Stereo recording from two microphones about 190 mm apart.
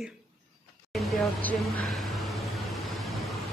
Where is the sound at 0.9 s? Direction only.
Centre (ahead or behind).